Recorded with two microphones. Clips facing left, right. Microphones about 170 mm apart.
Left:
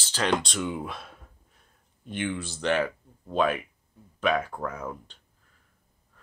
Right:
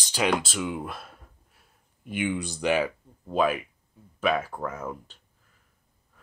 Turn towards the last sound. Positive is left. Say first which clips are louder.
# right 1 dB
turn(degrees=-5)  # may be behind; listen again after turning